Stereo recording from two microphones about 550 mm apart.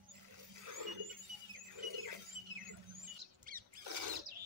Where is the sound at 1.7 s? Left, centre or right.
Right.